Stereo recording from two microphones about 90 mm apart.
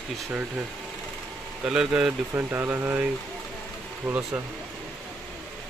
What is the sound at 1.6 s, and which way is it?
Speech, 10° right (ahead or behind).